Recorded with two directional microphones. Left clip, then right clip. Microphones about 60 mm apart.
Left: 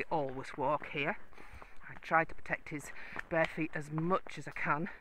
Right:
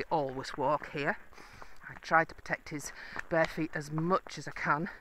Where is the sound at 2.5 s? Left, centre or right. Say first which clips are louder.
Right 2 dB; right.